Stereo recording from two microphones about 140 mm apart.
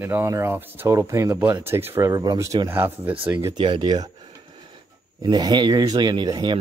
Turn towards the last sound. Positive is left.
turn(degrees=-30)  # may be behind; listen again after turning